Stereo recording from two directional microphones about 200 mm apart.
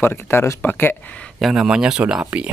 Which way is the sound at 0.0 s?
10° left (ahead or behind).